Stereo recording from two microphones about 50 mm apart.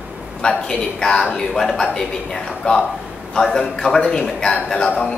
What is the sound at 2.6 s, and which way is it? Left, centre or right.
Speech, left.